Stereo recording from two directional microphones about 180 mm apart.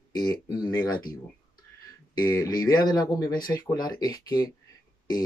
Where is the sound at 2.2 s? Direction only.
20° left (ahead or behind).